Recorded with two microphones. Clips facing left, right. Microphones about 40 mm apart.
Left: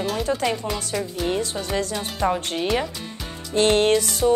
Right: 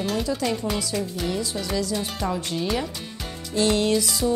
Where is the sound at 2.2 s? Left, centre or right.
Left.